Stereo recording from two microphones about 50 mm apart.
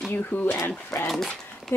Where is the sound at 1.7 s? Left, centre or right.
Left.